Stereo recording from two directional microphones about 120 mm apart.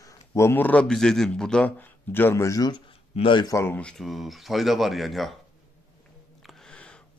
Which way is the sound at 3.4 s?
20° left (ahead or behind).